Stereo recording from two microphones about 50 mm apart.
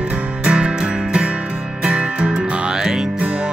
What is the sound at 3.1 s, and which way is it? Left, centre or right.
Music, right.